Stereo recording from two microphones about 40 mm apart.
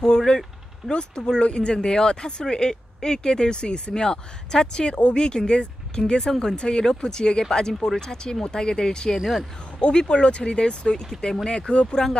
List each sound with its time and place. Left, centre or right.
0.0 s vehicle: centre
0.8 s speech: left
9.2 s speech: centre
9.8 s speech: left